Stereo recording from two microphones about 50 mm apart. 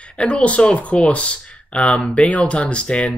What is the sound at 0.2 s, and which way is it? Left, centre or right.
Speech, left.